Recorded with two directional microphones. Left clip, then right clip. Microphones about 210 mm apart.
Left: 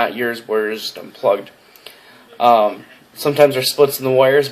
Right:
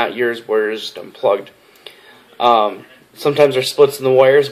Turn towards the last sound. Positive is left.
turn(degrees=10)  # may be behind; listen again after turning